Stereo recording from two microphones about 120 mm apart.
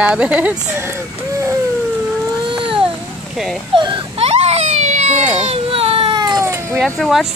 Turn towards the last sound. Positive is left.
turn(degrees=0)  # may be behind; listen again after turning